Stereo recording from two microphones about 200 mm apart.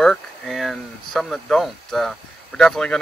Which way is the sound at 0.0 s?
Centre (ahead or behind).